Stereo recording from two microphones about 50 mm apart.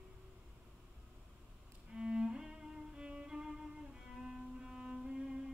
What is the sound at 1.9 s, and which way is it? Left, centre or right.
Music, centre.